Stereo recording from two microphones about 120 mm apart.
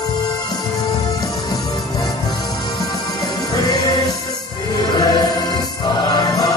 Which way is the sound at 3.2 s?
35° left (ahead or behind).